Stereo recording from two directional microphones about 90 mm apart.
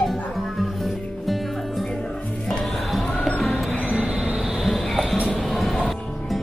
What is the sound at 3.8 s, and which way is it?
Train, 10° right (ahead or behind).